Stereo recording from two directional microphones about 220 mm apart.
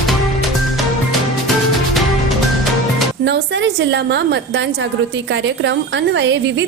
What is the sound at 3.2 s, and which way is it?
A woman's voice, 50° right (ahead or behind).